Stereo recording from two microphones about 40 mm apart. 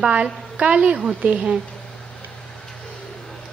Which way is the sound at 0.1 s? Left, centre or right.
Right.